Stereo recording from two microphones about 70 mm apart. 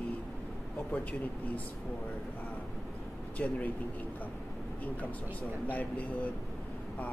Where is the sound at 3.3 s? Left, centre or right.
Left.